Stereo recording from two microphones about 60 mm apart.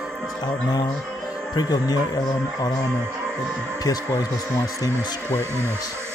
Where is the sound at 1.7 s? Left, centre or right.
Left.